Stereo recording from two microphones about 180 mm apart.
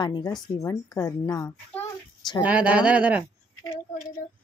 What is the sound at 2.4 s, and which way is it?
Speech, 5° right (ahead or behind).